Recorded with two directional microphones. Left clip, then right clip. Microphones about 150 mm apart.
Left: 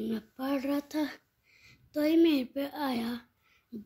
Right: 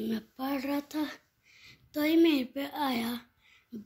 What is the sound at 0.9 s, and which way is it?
Speech, 25° left (ahead or behind).